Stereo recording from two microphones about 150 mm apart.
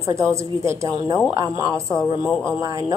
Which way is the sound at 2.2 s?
5° left (ahead or behind).